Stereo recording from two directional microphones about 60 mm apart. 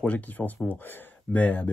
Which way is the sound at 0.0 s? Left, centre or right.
Left.